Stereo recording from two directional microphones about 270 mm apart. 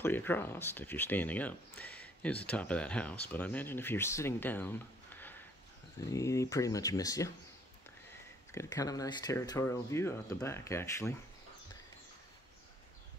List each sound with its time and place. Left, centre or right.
0.0 s speech: centre
8.5 s speech: centre